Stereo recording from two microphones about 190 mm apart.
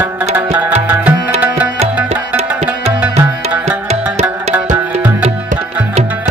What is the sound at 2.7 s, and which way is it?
Music, 10° right (ahead or behind).